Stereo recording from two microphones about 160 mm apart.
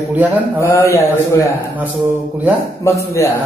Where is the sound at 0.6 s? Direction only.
15° left (ahead or behind).